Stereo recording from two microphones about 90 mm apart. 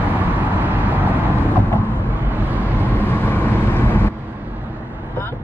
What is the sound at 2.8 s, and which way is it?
Vehicle, 25° left (ahead or behind).